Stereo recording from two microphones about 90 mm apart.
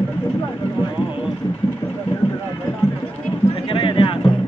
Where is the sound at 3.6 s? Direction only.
80° left.